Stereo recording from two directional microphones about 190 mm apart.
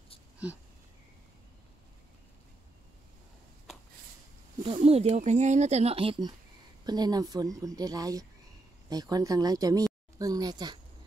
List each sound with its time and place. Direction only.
4.7 s speech: 35° right (ahead or behind)